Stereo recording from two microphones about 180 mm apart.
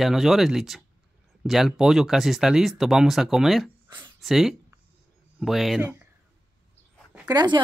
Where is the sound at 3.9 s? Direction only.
25° right (ahead or behind).